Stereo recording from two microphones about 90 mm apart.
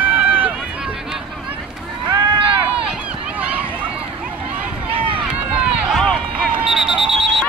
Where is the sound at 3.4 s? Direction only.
15° right (ahead or behind).